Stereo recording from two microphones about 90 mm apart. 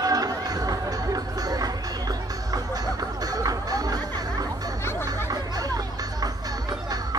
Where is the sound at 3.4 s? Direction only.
45° right (ahead or behind).